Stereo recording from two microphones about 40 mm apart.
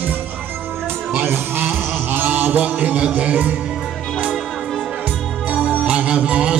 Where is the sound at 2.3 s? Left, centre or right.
Right.